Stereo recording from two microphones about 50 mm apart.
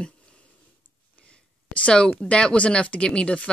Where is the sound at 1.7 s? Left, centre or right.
Left.